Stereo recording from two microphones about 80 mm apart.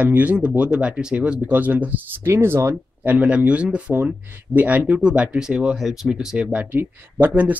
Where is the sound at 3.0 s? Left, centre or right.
Centre.